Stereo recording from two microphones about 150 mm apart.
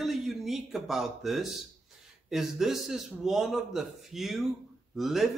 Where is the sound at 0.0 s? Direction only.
Centre (ahead or behind).